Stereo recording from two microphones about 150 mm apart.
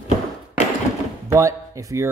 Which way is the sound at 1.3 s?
20° right (ahead or behind).